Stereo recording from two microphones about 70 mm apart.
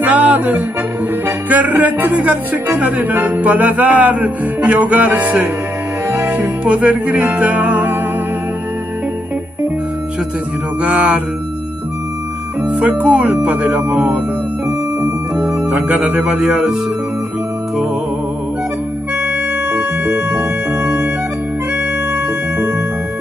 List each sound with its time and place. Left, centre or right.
0.0 s speech: right
6.2 s music: centre
10.8 s speech: centre
12.6 s speech: right
15.5 s speech: right
16.4 s speech: centre
19.2 s music: right
22.1 s music: right